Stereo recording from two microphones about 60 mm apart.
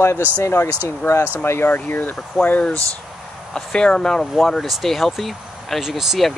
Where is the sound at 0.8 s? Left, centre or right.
Left.